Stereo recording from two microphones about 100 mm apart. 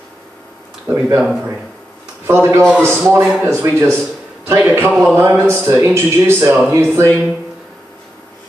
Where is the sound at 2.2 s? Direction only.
25° right (ahead or behind).